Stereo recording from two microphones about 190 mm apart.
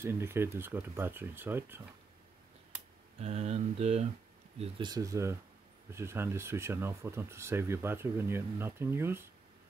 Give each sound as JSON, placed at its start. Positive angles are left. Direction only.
{"t": 0.0, "sound": "speech", "side_deg": -15}
{"t": 3.2, "sound": "speech", "side_deg": -35}
{"t": 4.6, "sound": "speech", "side_deg": -25}